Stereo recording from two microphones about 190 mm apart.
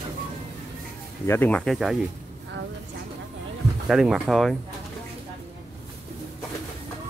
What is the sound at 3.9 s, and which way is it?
Speech, centre (ahead or behind).